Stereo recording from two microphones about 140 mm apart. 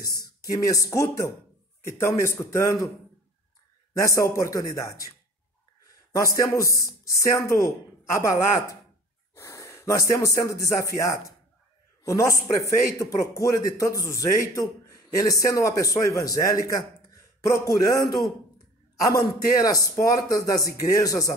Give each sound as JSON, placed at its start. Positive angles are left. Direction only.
{"t": 0.2, "sound": "a man's voice", "side_deg": 25}
{"t": 4.0, "sound": "a man's voice", "side_deg": 25}
{"t": 6.1, "sound": "a man's voice", "side_deg": 25}